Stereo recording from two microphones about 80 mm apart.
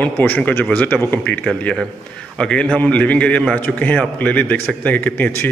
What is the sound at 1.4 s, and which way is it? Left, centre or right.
A man's voice, centre.